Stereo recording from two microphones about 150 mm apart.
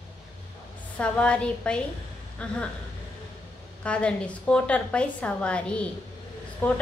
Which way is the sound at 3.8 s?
10° left (ahead or behind).